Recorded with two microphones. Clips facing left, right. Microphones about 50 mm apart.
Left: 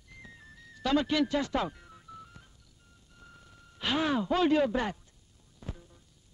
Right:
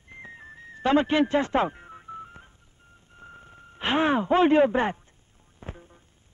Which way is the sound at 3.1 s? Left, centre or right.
Right.